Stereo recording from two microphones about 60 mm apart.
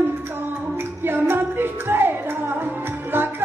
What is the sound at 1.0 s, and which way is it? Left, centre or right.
Music, right.